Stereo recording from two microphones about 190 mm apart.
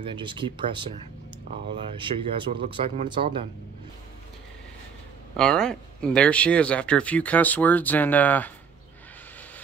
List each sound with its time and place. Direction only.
0.0 s speech: 25° right (ahead or behind)
5.4 s speech: 5° left (ahead or behind)